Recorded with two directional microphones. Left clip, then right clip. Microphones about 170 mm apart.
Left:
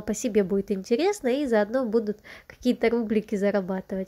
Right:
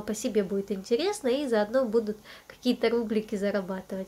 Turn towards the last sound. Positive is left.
turn(degrees=40)  # may be behind; listen again after turning